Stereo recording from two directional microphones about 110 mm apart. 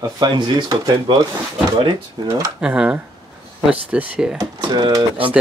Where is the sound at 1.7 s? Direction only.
50° right (ahead or behind).